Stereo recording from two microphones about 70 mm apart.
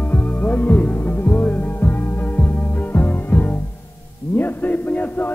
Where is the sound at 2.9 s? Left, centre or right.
Left.